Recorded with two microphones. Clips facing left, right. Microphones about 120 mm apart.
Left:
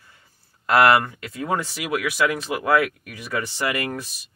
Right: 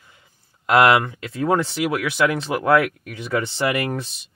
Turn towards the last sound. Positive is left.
turn(degrees=-25)  # may be behind; listen again after turning